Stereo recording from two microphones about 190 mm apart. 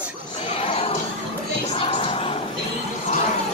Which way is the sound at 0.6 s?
30° left (ahead or behind).